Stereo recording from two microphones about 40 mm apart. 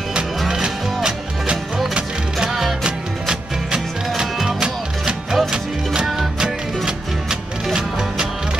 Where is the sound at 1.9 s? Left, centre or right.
Centre.